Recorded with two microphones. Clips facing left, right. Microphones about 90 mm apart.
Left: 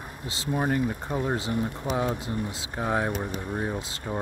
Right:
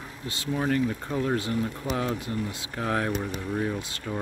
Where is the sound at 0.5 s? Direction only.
15° left (ahead or behind).